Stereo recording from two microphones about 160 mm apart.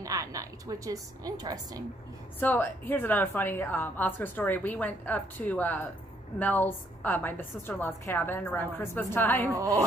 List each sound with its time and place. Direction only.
0.0 s a woman's voice: 20° right (ahead or behind)
2.4 s a woman's voice: 10° left (ahead or behind)
9.5 s a woman's voice: 20° right (ahead or behind)